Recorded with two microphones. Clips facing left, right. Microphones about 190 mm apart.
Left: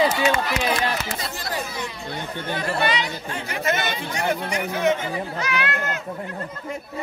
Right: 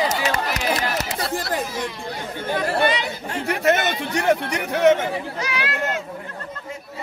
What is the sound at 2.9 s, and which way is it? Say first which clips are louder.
Speech: right 1 dB; 60° right (ahead or behind).